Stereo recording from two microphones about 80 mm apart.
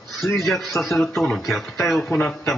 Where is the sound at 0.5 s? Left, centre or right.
Centre.